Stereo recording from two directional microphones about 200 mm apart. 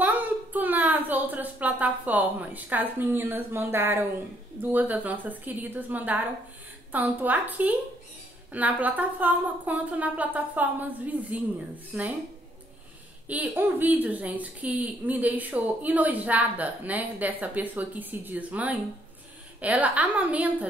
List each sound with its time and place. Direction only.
0.0 s a sound: 10° right (ahead or behind)
4.6 s a woman's voice: 10° right (ahead or behind)
13.3 s a woman's voice: 10° right (ahead or behind)